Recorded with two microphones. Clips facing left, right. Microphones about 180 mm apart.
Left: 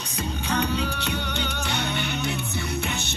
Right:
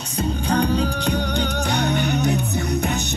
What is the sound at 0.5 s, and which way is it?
Music, 35° right (ahead or behind).